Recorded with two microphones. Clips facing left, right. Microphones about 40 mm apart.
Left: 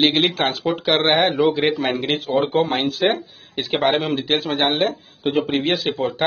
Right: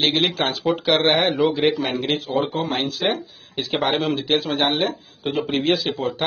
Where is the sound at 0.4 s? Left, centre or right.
Centre.